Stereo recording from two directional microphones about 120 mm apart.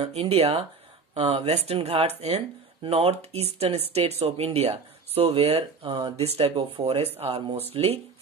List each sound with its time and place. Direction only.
0.0 s speech: 55° right (ahead or behind)
6.1 s speech: 60° right (ahead or behind)